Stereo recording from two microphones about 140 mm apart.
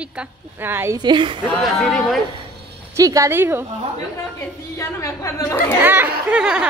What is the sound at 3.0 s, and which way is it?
Speech, 20° right (ahead or behind).